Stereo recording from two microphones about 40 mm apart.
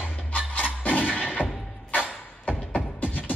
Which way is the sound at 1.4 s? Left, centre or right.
Right.